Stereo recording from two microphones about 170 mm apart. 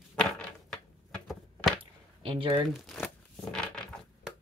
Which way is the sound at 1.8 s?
30° right (ahead or behind).